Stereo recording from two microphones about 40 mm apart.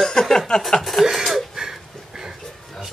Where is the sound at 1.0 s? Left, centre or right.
Centre.